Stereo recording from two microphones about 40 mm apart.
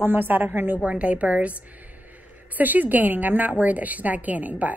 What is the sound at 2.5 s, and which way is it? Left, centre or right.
A woman's voice, right.